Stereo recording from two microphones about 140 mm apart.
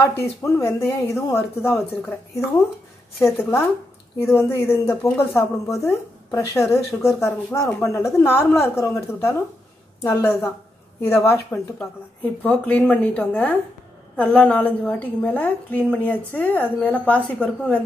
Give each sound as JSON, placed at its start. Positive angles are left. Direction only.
{"t": 0.0, "sound": "a woman's voice", "side_deg": 15}
{"t": 3.2, "sound": "a woman's voice", "side_deg": 15}
{"t": 12.4, "sound": "a woman's voice", "side_deg": 10}